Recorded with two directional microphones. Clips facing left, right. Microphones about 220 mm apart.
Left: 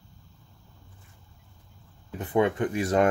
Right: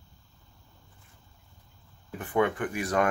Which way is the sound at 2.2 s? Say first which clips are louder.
Left 3 dB; 20° left (ahead or behind).